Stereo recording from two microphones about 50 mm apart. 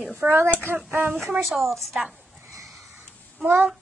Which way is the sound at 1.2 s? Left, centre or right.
Centre.